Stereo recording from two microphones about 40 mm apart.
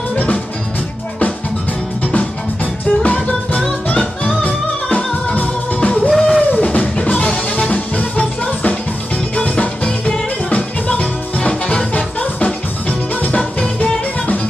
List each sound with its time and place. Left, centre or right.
0.1 s music: left
2.1 s music: left
6.0 s music: centre
6.5 s drum kit: left
7.4 s music: left
9.8 s music: left